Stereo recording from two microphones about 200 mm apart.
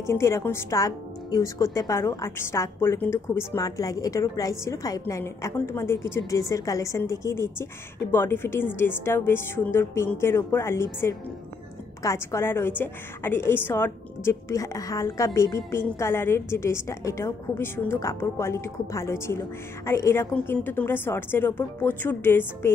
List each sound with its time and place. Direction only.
0.0 s a woman's voice: 15° left (ahead or behind)